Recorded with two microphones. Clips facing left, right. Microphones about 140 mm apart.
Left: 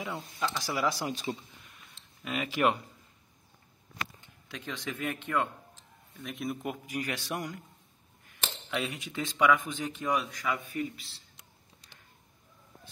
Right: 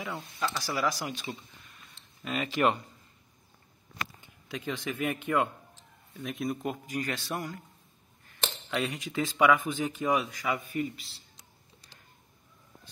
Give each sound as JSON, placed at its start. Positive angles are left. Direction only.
{"t": 0.0, "sound": "speech", "side_deg": 15}
{"t": 2.2, "sound": "a man's voice", "side_deg": 10}
{"t": 4.2, "sound": "speech", "side_deg": -10}
{"t": 7.0, "sound": "a man's voice", "side_deg": 15}
{"t": 8.6, "sound": "speech", "side_deg": 0}